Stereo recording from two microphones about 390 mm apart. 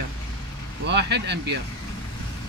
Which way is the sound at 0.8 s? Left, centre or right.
Right.